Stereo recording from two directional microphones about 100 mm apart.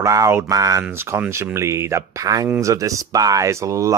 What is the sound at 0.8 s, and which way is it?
Speech, 20° right (ahead or behind).